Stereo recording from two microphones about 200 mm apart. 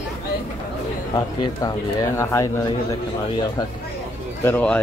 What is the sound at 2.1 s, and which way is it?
Speech, 15° left (ahead or behind).